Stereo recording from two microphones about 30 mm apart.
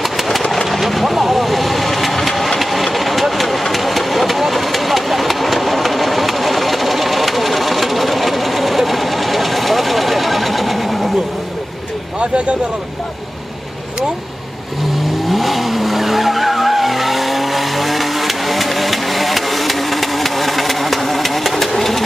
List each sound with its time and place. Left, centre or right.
0.0 s engine: centre
0.7 s vehicle: centre
2.9 s engine: centre
12.2 s vehicle: right
15.2 s vehicle: centre